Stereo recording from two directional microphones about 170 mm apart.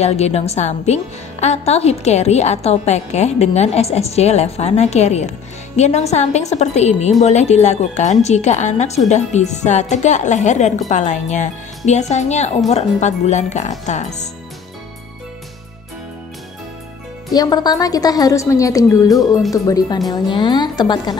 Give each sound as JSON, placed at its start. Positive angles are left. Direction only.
{"t": 0.0, "sound": "a woman's voice", "side_deg": 40}
{"t": 17.3, "sound": "a woman's voice", "side_deg": 20}